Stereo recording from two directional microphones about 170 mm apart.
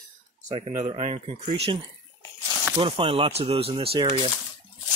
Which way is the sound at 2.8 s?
35° right (ahead or behind).